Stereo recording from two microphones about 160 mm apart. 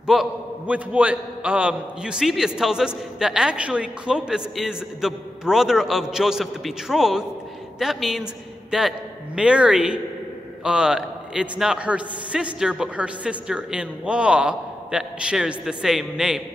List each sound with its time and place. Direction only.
0.0 s a man's voice: 5° right (ahead or behind)